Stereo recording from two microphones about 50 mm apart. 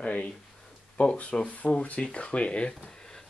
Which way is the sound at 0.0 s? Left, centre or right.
Left.